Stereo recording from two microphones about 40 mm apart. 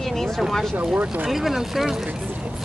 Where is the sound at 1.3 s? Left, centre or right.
Centre.